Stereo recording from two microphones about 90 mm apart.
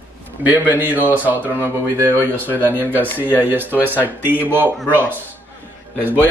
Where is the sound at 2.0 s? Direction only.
20° left (ahead or behind).